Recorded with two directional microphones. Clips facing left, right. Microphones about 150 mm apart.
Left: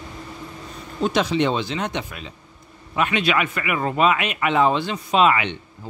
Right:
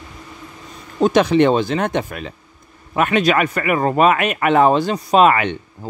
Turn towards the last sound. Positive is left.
turn(degrees=-50)  # may be behind; listen again after turning